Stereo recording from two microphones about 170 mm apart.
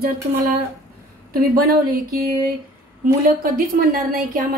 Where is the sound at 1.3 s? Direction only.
60° right (ahead or behind).